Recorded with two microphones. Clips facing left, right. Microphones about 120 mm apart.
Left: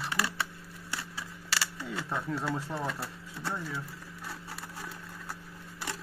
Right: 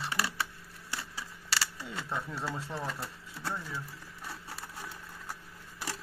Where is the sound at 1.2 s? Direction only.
35° right (ahead or behind).